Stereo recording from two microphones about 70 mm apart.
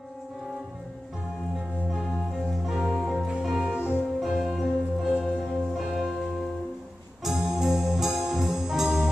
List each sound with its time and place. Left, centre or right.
2.1 s music: centre
7.2 s music: centre